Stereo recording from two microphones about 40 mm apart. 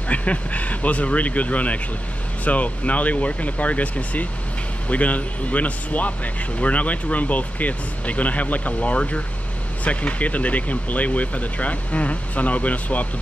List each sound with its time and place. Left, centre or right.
0.1 s speech: left